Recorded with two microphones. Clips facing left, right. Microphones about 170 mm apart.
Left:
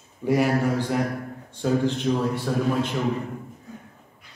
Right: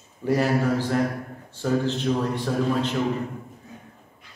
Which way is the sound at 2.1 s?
15° left (ahead or behind).